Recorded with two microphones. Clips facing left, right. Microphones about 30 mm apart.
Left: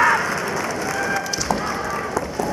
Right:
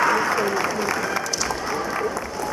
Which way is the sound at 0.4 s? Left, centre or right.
Centre.